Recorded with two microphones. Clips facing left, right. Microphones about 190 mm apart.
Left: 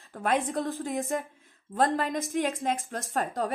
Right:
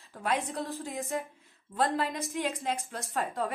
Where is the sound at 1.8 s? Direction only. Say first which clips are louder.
Left 3 dB; 45° left (ahead or behind).